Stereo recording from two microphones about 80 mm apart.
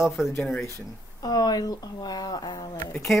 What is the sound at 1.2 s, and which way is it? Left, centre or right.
Speech, left.